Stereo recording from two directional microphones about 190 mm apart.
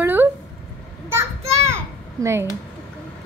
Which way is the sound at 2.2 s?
15° right (ahead or behind).